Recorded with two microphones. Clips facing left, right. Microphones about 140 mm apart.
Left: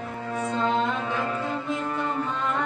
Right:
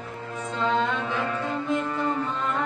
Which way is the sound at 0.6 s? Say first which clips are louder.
Right 2 dB; centre (ahead or behind).